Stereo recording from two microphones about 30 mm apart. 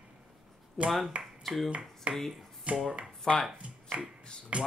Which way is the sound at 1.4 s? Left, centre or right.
Centre.